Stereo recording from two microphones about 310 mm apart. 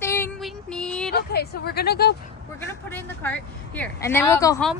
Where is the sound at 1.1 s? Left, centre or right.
Left.